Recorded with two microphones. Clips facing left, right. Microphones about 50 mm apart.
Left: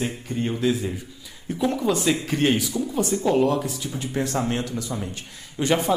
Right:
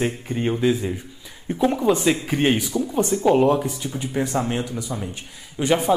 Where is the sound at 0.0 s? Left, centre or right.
Right.